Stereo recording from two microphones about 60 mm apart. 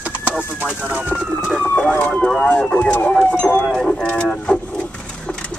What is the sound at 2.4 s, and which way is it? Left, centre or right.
Vehicle, centre.